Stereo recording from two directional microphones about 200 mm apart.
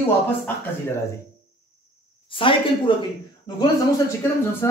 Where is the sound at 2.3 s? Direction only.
25° left (ahead or behind).